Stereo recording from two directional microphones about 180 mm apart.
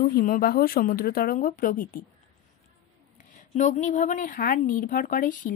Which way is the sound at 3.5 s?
45° left (ahead or behind).